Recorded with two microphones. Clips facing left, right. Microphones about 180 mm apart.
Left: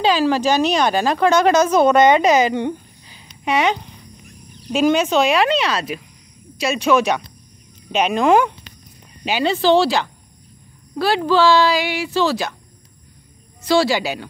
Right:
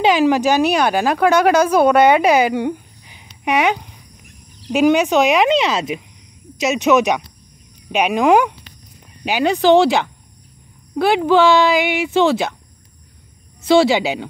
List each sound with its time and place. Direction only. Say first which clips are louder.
0.0 s speech: right 3 dB; 20° right (ahead or behind)
13.7 s speech: right 4 dB; 20° right (ahead or behind)